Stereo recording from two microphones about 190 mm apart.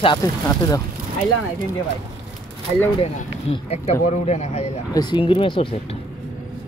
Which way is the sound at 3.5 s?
35° left (ahead or behind).